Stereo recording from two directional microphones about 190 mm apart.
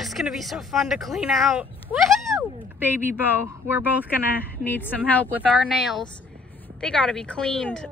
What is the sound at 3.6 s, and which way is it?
Speech, 10° right (ahead or behind).